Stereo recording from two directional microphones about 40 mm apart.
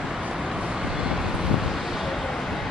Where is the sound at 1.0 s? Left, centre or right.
Centre.